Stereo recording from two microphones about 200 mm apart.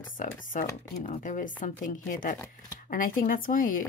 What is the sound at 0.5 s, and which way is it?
Speech, 40° left (ahead or behind).